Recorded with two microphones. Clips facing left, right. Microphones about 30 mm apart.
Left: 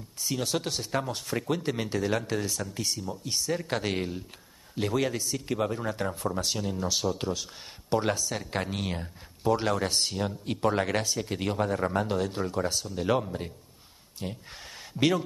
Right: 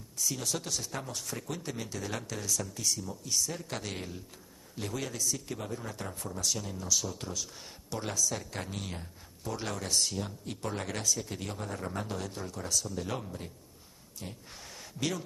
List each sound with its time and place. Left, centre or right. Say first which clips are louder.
0.2 s speech: left 5 dB; left